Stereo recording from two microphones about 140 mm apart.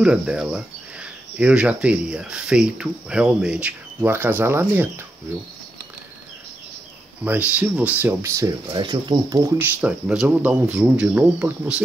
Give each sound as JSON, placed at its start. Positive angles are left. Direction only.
{"t": 0.0, "sound": "cricket", "side_deg": -5}
{"t": 1.4, "sound": "speech", "side_deg": -10}
{"t": 7.2, "sound": "speech", "side_deg": -10}
{"t": 8.7, "sound": "speech", "side_deg": -30}
{"t": 9.6, "sound": "speech", "side_deg": -10}